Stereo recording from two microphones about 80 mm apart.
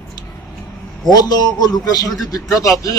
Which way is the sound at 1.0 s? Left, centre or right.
Left.